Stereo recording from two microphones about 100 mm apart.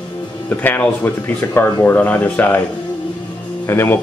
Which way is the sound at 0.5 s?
15° left (ahead or behind).